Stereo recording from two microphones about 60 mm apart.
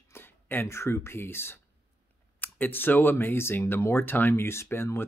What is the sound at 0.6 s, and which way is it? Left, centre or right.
Speech, left.